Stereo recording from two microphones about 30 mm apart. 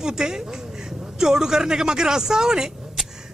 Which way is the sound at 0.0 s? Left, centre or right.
Right.